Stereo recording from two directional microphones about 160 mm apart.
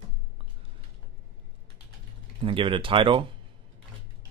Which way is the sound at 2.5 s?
35° right (ahead or behind).